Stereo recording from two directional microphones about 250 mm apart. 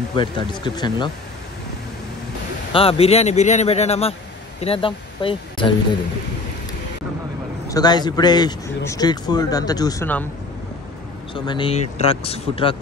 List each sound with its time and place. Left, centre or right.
0.1 s speech: centre
2.7 s speech: left
7.6 s speech: centre
11.4 s speech: centre